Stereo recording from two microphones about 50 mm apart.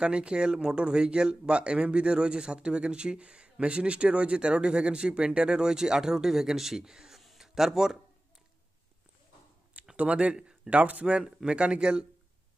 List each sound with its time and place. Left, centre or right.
0.0 s speech: centre
7.2 s a sound: centre
9.9 s speech: right